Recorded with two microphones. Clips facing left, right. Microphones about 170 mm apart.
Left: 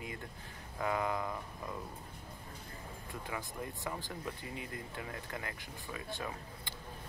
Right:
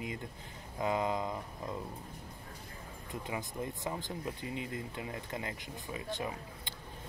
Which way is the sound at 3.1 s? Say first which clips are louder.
Right 3 dB; 20° right (ahead or behind).